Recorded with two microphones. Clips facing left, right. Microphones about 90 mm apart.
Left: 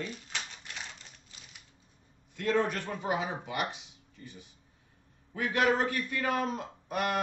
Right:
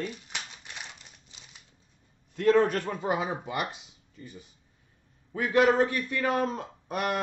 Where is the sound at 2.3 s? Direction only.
45° right (ahead or behind).